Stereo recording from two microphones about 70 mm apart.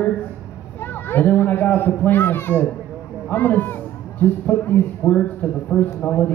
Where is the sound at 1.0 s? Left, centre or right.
Left.